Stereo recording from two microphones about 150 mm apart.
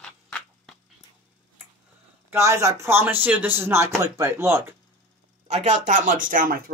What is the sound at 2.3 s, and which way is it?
Speech, 20° right (ahead or behind).